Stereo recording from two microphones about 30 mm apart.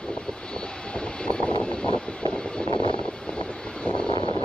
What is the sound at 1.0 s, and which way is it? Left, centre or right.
Vehicle, left.